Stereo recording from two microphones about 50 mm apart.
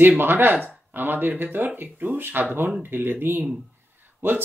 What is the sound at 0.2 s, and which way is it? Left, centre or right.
Speech, right.